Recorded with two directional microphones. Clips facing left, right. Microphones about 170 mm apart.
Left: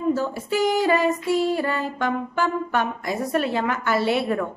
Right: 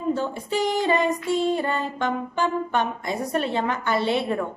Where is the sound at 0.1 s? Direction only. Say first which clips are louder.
Right 1 dB; 25° right (ahead or behind).